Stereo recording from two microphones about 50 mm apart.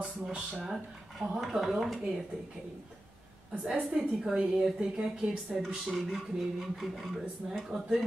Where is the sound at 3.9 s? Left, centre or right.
Centre.